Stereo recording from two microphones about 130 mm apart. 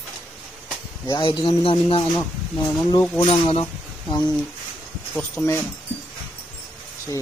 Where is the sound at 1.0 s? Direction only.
35° left (ahead or behind).